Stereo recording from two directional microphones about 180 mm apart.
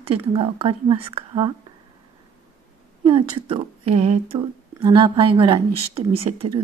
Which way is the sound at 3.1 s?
30° right (ahead or behind).